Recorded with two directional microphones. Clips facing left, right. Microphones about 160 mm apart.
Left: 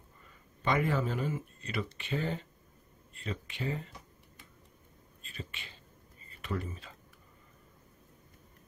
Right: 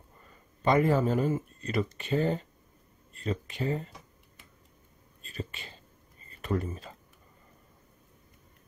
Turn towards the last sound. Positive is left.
turn(degrees=-40)  # may be behind; listen again after turning